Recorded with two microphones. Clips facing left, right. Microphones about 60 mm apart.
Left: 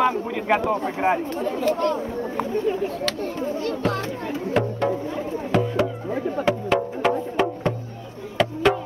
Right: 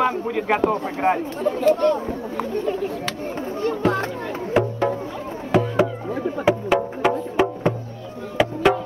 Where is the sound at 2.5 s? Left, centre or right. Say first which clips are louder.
Even; centre.